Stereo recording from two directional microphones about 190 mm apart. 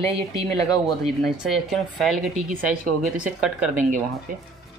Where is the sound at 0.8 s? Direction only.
Centre (ahead or behind).